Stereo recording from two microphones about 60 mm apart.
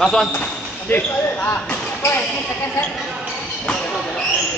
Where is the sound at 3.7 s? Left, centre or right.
Centre.